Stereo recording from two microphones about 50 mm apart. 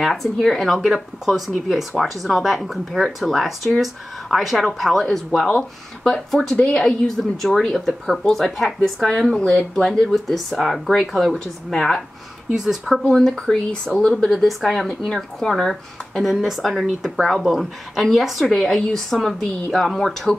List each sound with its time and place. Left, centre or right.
0.0 s speech: centre
0.7 s speech: centre
6.8 s speech: centre
9.8 s speech: centre
12.5 s speech: centre
13.1 s speech: centre
13.9 s speech: centre
14.3 s speech: centre